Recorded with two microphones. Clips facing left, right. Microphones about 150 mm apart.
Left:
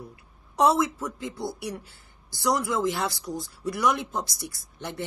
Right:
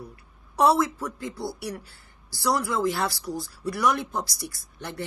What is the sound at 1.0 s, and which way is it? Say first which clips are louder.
Speech: even; 20° left (ahead or behind).